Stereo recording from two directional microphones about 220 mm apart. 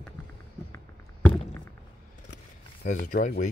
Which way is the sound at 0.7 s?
10° left (ahead or behind).